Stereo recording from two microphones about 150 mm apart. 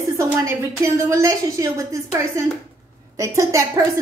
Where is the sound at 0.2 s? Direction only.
20° right (ahead or behind).